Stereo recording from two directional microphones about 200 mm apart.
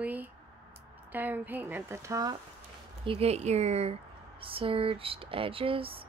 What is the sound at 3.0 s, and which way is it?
Speech, 30° right (ahead or behind).